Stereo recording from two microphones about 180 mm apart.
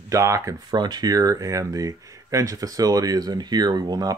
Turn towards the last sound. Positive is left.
turn(degrees=-20)  # may be behind; listen again after turning